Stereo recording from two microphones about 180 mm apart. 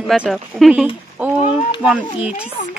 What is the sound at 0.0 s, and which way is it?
A woman's voice, centre (ahead or behind).